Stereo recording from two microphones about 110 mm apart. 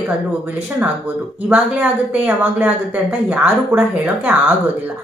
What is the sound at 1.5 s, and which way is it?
A woman's voice, 15° right (ahead or behind).